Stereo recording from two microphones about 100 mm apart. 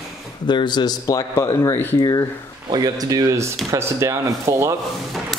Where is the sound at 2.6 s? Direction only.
45° right (ahead or behind).